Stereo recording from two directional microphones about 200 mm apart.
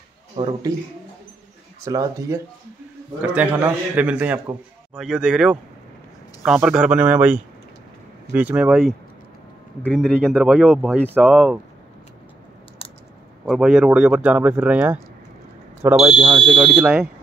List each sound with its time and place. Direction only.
0.4 s a man's voice: 20° right (ahead or behind)
1.9 s a man's voice: 15° right (ahead or behind)
13.5 s a man's voice: 5° right (ahead or behind)